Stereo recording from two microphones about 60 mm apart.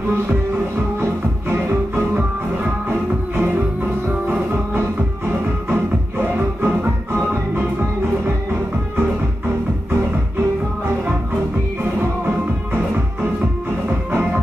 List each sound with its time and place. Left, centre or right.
1.5 s music: right
6.2 s music: right